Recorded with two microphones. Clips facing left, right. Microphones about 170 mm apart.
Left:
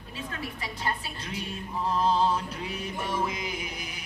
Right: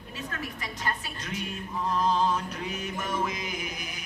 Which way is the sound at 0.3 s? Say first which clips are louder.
Left 1 dB; 30° left (ahead or behind).